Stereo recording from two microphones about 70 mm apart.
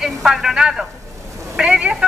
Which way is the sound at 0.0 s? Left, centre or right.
Centre.